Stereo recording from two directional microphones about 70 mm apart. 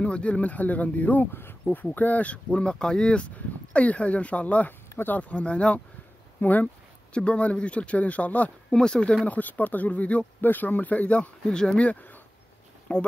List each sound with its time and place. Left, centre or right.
0.0 s speech: centre